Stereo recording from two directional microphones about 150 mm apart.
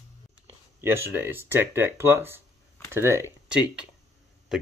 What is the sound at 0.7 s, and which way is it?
Speech, 15° right (ahead or behind).